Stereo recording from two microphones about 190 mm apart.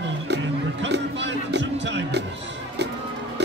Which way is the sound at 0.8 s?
65° right (ahead or behind).